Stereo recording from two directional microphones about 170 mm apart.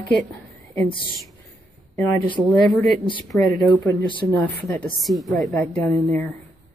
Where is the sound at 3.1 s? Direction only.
25° left (ahead or behind).